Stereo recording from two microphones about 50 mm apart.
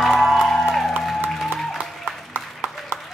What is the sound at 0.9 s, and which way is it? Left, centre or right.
Music, right.